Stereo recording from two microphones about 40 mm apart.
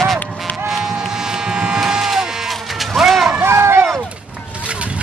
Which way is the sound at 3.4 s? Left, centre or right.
Right.